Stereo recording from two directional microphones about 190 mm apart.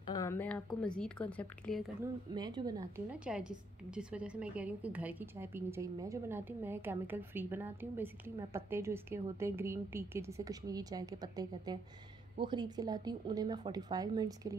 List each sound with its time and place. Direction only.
0.0 s speech: 20° left (ahead or behind)
2.3 s speech: 20° right (ahead or behind)
3.1 s a woman's voice: 5° right (ahead or behind); by 14.5 s 20° right (ahead or behind)